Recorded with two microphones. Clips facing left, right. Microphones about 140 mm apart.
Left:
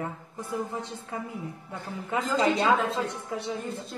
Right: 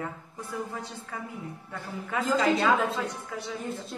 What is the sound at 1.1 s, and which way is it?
A woman's voice, 25° left (ahead or behind).